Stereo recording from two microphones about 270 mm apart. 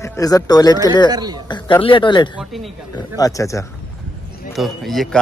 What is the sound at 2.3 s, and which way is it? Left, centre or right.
Speech, centre.